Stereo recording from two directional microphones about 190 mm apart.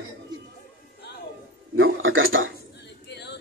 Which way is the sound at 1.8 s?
90° right.